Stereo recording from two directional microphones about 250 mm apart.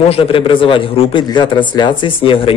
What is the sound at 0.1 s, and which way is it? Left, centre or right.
Speech, left.